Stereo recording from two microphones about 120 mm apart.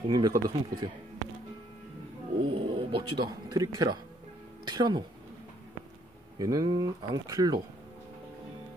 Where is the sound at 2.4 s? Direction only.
45° right (ahead or behind).